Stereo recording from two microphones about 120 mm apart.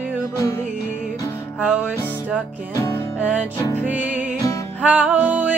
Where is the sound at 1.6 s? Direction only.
10° right (ahead or behind).